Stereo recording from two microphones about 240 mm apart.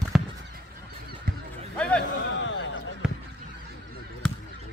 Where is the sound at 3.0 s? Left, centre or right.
Centre.